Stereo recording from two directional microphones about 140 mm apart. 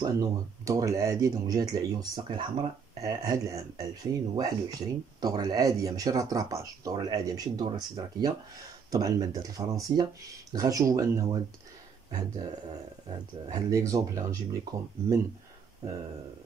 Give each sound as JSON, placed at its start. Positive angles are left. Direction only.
{"t": 0.0, "sound": "speech", "side_deg": -25}
{"t": 3.0, "sound": "speech", "side_deg": -25}
{"t": 13.5, "sound": "speech", "side_deg": -25}